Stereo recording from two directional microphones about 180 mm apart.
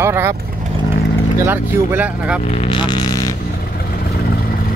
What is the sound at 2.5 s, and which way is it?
Speech, 30° left (ahead or behind).